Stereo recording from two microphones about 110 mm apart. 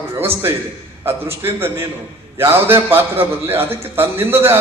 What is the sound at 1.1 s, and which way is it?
A man's voice, 20° right (ahead or behind).